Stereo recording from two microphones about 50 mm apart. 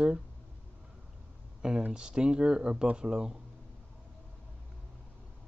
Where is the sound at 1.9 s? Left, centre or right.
Centre.